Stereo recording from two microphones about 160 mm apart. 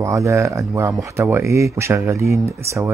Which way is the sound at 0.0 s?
20° right (ahead or behind).